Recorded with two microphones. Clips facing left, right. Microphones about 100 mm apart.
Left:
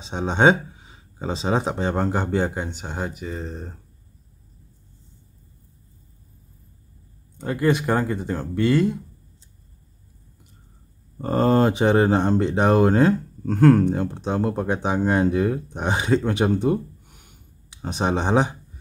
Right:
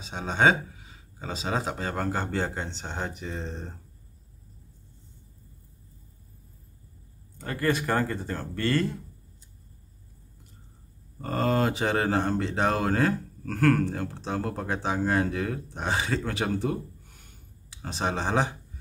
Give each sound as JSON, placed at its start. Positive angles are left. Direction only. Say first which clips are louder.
{"t": 0.0, "sound": "speech", "louder": "left 5 dB", "side_deg": 25}
{"t": 7.3, "sound": "speech", "louder": "left 6 dB", "side_deg": 15}
{"t": 11.1, "sound": "speech", "louder": "left 7 dB", "side_deg": 30}